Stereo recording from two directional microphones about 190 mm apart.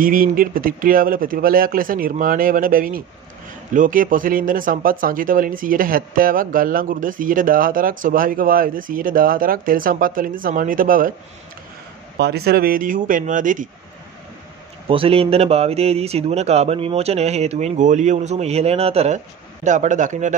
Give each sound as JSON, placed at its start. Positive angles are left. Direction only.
{"t": 0.0, "sound": "speech", "side_deg": -45}
{"t": 12.2, "sound": "speech", "side_deg": -60}
{"t": 14.9, "sound": "speech", "side_deg": -30}